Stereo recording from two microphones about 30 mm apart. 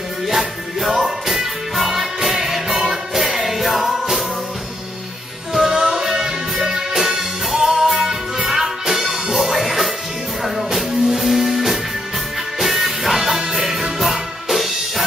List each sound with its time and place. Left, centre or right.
0.3 s music: centre
5.5 s music: centre